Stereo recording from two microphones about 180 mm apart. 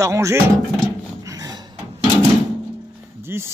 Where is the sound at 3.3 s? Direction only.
15° right (ahead or behind).